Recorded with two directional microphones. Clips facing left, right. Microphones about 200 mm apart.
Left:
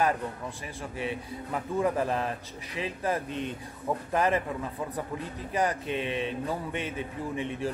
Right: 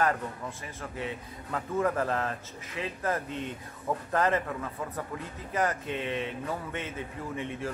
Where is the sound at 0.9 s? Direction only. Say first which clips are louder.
Left 4 dB; 15° left (ahead or behind).